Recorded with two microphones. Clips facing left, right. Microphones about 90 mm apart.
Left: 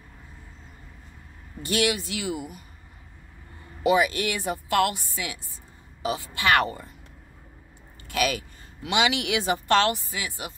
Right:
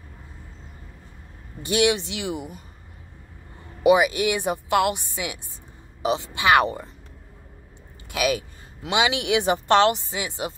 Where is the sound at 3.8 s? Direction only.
15° right (ahead or behind).